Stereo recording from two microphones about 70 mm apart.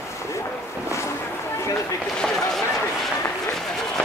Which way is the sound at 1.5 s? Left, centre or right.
Left.